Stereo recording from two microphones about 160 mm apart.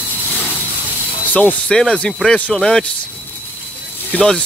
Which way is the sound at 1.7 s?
5° left (ahead or behind).